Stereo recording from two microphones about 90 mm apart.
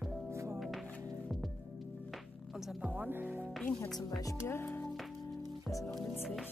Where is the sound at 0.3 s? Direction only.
30° right (ahead or behind).